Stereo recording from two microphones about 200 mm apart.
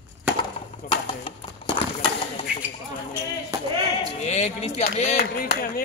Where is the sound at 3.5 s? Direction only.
20° right (ahead or behind).